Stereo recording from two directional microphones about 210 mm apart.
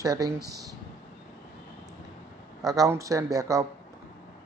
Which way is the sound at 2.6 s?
15° right (ahead or behind).